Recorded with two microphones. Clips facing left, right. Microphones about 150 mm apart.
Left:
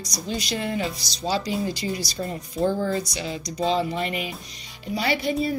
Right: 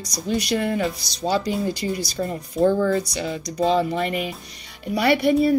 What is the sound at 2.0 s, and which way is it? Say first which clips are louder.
Speech: right 4 dB; 45° right (ahead or behind).